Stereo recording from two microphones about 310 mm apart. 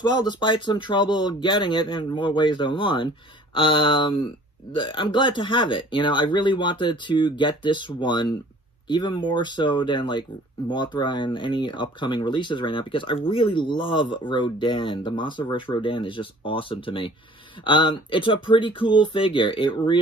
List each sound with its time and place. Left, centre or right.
0.0 s speech: centre